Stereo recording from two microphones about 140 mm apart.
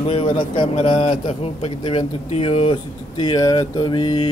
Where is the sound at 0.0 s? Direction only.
40° left (ahead or behind).